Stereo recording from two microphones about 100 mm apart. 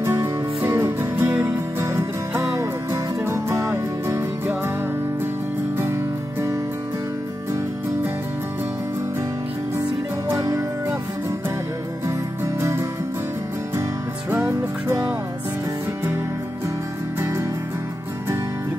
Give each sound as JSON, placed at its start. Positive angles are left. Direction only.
{"t": 0.0, "sound": "music", "side_deg": -25}
{"t": 9.8, "sound": "music", "side_deg": -30}
{"t": 12.5, "sound": "music", "side_deg": -25}
{"t": 14.3, "sound": "music", "side_deg": -25}